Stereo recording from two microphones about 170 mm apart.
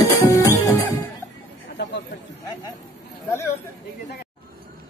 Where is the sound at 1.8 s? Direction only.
90° left.